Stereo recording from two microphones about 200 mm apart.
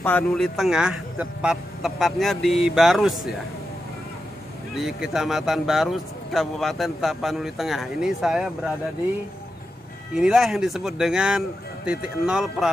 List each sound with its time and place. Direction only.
0.0 s speech: 5° left (ahead or behind)
4.7 s speech: centre (ahead or behind)
10.1 s speech: 5° right (ahead or behind)